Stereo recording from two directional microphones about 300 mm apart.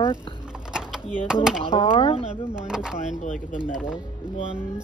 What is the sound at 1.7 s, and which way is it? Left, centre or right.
Speech, centre.